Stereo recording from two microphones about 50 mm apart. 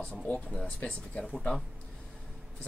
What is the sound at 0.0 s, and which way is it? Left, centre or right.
Speech, left.